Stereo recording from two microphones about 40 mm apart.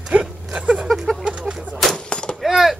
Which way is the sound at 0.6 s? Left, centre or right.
Right.